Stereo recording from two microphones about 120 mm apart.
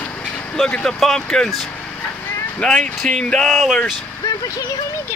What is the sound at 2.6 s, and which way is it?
Speech, 5° left (ahead or behind).